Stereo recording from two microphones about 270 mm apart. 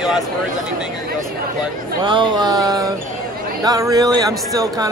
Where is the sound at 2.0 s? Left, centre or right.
Centre.